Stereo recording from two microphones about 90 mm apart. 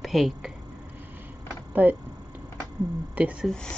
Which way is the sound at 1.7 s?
20° right (ahead or behind).